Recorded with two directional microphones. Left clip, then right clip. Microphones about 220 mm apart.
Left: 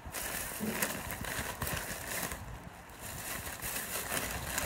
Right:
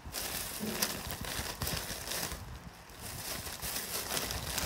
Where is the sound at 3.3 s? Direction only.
45° right (ahead or behind).